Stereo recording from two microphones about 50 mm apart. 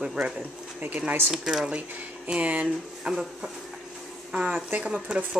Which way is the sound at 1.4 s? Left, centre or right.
Centre.